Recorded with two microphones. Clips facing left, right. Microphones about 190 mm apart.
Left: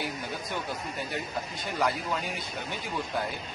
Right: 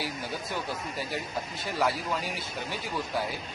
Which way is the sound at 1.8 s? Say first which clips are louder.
Even; 5° right (ahead or behind).